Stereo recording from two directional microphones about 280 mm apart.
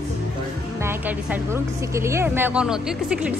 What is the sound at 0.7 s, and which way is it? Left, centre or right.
A woman's voice, centre.